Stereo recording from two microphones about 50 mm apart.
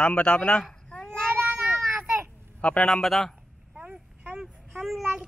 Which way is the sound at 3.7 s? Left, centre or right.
Right.